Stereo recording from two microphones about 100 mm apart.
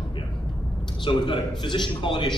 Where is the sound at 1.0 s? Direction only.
55° left (ahead or behind).